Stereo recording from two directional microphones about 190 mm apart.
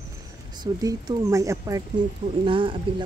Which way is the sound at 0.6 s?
20° right (ahead or behind).